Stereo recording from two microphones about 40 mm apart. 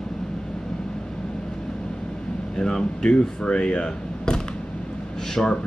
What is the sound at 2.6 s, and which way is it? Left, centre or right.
Speech, centre.